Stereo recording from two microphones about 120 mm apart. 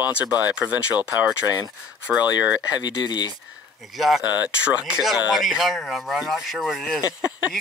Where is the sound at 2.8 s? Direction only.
35° left (ahead or behind).